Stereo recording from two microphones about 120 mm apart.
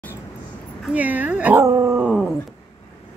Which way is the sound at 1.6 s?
25° right (ahead or behind).